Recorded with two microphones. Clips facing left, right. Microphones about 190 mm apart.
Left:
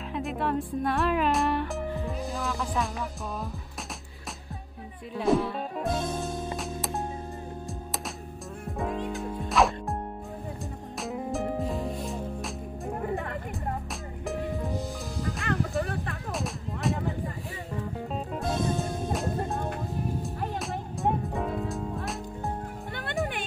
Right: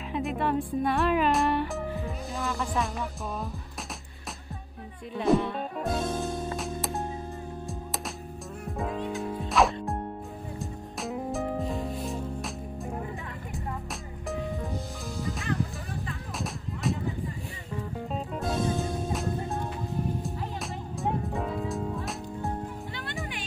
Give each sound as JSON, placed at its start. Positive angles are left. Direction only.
{"t": 0.1, "sound": "speech", "side_deg": 0}
{"t": 5.1, "sound": "music", "side_deg": 0}
{"t": 8.6, "sound": "music", "side_deg": 0}
{"t": 13.1, "sound": "music", "side_deg": 60}
{"t": 15.4, "sound": "music", "side_deg": 70}
{"t": 16.3, "sound": "music", "side_deg": 0}
{"t": 20.2, "sound": "music", "side_deg": 0}